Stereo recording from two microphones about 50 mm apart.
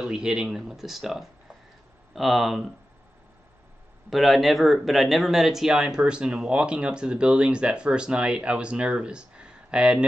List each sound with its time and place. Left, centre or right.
0.0 s speech: centre
4.1 s speech: centre